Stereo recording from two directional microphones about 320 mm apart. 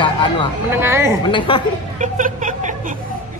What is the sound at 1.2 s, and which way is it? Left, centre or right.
Speech, centre.